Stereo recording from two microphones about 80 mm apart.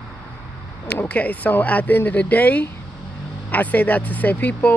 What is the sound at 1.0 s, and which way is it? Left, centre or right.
Speech, centre.